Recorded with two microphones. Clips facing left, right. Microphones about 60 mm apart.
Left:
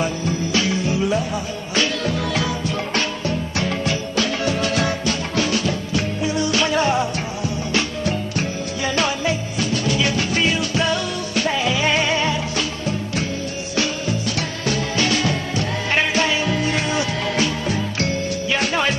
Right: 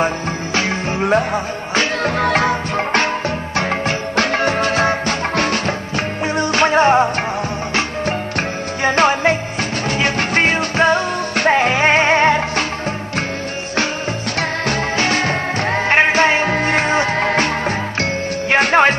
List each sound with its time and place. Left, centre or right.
0.6 s music: right
8.4 s music: right
15.0 s music: right